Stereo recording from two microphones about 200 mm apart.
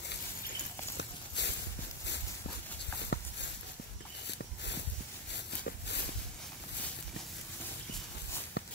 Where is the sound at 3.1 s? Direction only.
60° left (ahead or behind).